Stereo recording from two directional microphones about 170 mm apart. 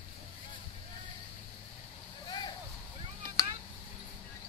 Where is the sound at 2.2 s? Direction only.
25° left (ahead or behind).